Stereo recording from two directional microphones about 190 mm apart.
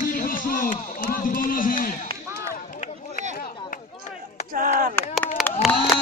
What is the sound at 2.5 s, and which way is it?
Run, 45° left (ahead or behind).